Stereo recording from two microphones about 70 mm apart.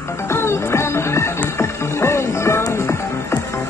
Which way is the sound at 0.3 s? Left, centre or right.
Left.